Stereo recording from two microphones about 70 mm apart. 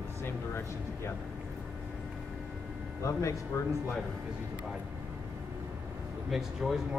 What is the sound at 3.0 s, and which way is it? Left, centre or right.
Speech, left.